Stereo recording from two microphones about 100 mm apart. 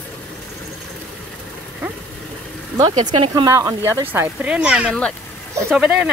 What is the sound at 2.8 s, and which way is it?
Speech, 50° right (ahead or behind).